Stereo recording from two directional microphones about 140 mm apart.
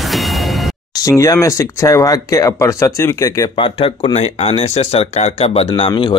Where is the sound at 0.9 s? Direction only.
25° left (ahead or behind).